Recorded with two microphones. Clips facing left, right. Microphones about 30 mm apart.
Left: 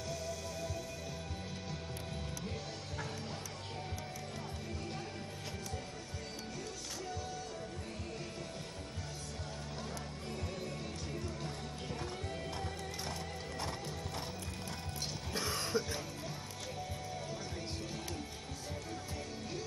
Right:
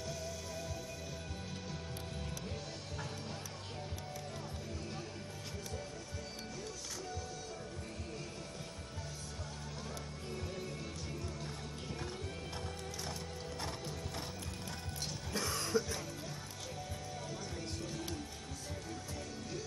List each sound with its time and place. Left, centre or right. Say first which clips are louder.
0.1 s music: left 2 dB; centre
11.4 s music: left 2 dB; centre
13.6 s horse: left 2 dB; centre
15.3 s music: right 1 dB; left